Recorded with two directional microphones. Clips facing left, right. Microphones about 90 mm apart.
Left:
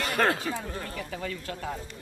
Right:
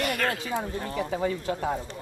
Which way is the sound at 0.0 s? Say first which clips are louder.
Left 2 dB; 30° left (ahead or behind).